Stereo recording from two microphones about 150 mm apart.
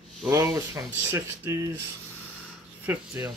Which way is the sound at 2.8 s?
15° right (ahead or behind).